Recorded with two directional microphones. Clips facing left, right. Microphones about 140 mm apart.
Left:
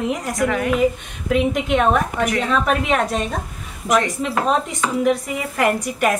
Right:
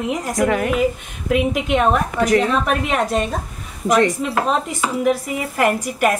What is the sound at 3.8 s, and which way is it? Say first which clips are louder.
Speech: right 3 dB; 35° right (ahead or behind).